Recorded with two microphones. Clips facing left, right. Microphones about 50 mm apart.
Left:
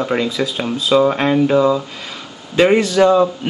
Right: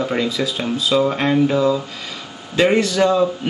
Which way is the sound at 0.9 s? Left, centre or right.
Left.